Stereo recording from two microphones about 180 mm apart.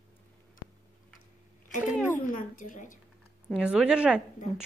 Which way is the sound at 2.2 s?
50° left (ahead or behind).